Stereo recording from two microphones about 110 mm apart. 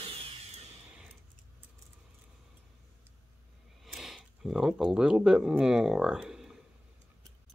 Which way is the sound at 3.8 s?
Centre (ahead or behind).